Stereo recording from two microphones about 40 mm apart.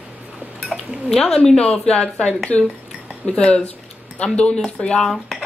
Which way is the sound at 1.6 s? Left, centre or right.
Left.